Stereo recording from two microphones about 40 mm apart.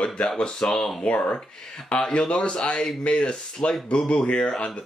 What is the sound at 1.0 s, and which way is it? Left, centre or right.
Speech, left.